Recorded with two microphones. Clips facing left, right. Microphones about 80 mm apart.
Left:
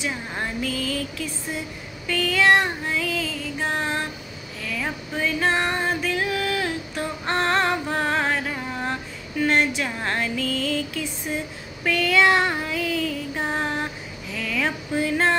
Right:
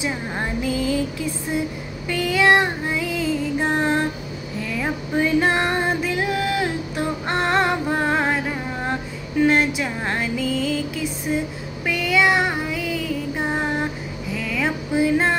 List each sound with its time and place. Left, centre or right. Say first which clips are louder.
0.0 s music: right 3 dB; centre
2.0 s female singing: right 2 dB; centre
3.7 s a sound: right 6 dB; right
4.6 s music: right 4 dB; centre
11.8 s child singing: even; centre
14.3 s a sound: right 2 dB; centre